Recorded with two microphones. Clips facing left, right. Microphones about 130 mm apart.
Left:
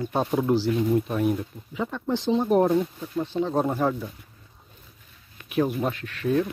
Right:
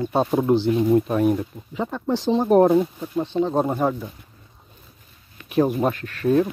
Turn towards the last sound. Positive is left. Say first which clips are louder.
# right 5 dB
turn(degrees=-40)  # may be behind; listen again after turning